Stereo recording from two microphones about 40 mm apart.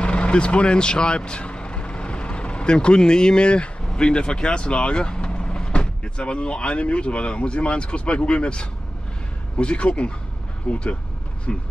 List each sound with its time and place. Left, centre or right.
0.0 s speech: left